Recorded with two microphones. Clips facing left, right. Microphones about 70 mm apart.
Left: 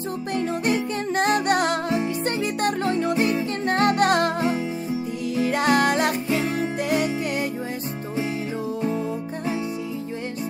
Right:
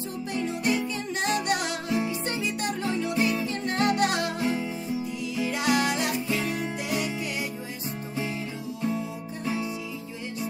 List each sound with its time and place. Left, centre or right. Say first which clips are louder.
0.3 s music: left 4 dB; left